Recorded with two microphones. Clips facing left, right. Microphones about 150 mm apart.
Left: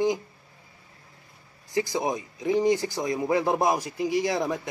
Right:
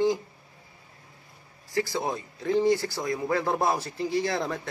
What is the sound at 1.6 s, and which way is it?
Speech, 20° left (ahead or behind).